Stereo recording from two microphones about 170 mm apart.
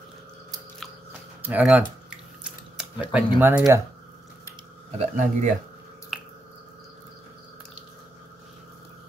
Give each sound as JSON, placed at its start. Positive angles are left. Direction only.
{"t": 1.4, "sound": "speech", "side_deg": -10}
{"t": 2.0, "sound": "drip", "side_deg": -5}
{"t": 3.3, "sound": "speech", "side_deg": -10}
{"t": 4.9, "sound": "speech", "side_deg": -40}
{"t": 6.1, "sound": "squish", "side_deg": 0}